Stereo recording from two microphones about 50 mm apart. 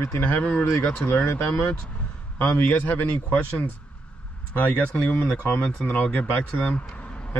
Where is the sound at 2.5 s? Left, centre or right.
Left.